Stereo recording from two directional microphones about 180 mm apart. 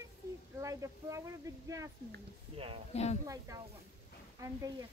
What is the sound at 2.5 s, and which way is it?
Speech, 30° right (ahead or behind).